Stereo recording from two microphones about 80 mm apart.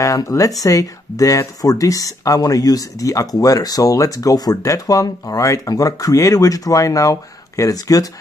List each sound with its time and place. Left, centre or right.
0.0 s speech: left